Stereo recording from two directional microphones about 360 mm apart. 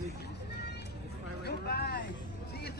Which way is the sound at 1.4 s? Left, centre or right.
Left.